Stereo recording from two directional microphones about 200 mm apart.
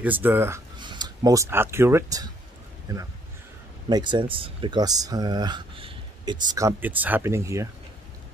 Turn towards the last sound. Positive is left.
turn(degrees=-15)  # may be behind; listen again after turning